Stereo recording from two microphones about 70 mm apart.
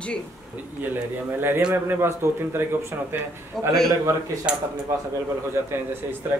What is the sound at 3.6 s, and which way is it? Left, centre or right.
Speech, centre.